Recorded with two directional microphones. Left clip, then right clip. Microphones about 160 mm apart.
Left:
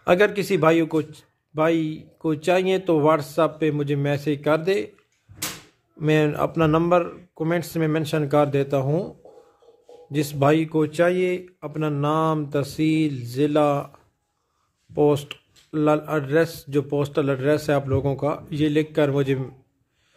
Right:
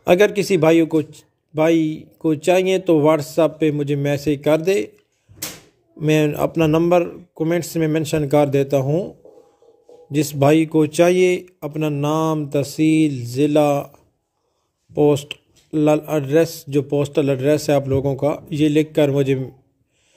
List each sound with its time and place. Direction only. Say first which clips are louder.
0.0 s a man's voice: right 4 dB; 15° right (ahead or behind)
6.0 s a man's voice: right 3 dB; 15° right (ahead or behind)
10.1 s a man's voice: right 4 dB; 10° right (ahead or behind)